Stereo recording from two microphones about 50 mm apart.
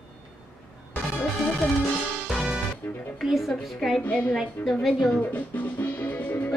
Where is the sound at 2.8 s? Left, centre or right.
Left.